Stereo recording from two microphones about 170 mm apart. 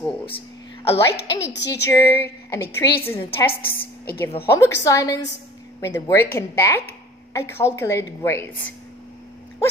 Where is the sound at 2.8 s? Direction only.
70° left (ahead or behind).